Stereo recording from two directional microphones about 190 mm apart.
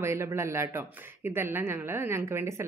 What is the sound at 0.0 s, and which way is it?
A woman's voice, 15° right (ahead or behind).